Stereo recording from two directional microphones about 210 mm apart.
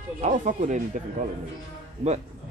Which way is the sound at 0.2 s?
35° right (ahead or behind).